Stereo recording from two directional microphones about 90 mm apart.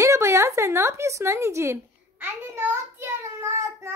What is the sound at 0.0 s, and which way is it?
A woman's voice, 30° right (ahead or behind).